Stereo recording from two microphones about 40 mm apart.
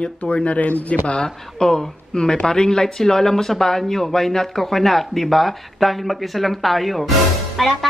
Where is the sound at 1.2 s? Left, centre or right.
Centre.